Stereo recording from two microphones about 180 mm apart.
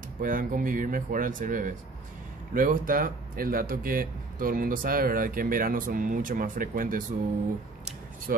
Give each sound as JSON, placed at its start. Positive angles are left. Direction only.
{"t": 0.2, "sound": "speech", "side_deg": -50}
{"t": 8.3, "sound": "speech", "side_deg": -55}